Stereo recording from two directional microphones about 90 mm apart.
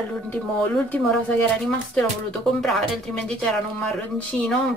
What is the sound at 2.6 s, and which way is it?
Speech, 5° left (ahead or behind).